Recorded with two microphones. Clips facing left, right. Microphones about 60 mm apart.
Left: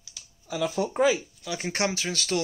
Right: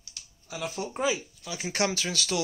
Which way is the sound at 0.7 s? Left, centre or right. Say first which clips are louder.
Left 6 dB; left.